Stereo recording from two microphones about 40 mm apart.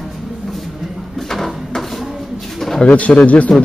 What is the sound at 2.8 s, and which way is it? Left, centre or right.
Speech, left.